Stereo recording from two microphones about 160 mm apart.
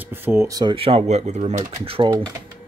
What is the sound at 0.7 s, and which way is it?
Speech, 35° right (ahead or behind).